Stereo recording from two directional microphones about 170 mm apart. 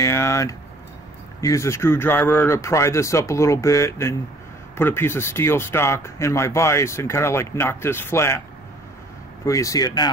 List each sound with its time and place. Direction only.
0.0 s speech: 15° left (ahead or behind)
9.4 s speech: 20° left (ahead or behind)